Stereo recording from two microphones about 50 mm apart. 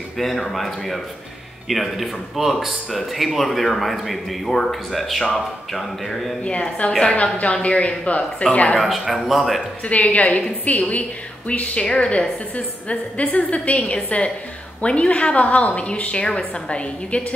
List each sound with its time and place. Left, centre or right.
0.2 s speech: centre
6.4 s a woman's voice: left
8.7 s speech: centre
9.8 s a woman's voice: left